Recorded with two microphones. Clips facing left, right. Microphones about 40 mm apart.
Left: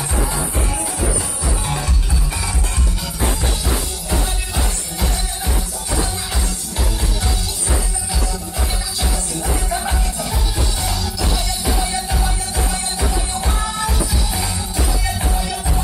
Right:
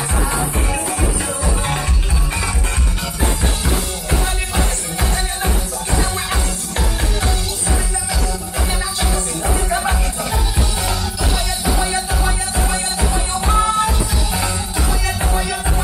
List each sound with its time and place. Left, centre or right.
9.7 s music: centre